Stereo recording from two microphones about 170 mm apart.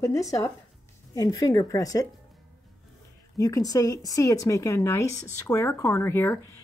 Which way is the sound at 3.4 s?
20° left (ahead or behind).